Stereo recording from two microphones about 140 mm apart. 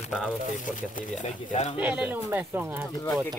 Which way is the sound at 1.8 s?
10° right (ahead or behind).